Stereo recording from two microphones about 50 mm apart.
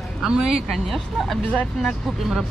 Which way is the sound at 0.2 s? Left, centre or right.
Centre.